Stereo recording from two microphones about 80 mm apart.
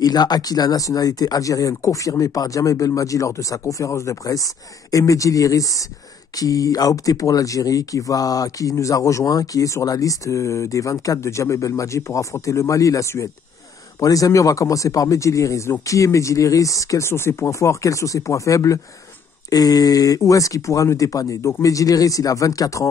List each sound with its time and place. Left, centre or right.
0.0 s speech: left